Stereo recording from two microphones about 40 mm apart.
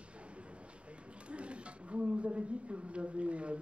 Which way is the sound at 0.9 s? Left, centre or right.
Right.